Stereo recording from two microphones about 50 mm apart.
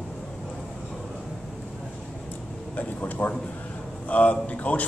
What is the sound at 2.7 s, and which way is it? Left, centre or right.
Speech, left.